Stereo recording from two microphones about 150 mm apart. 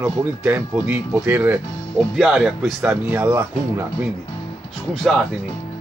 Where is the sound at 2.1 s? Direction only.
Centre (ahead or behind).